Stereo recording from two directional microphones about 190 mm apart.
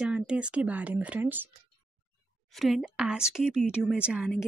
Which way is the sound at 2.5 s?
Centre (ahead or behind).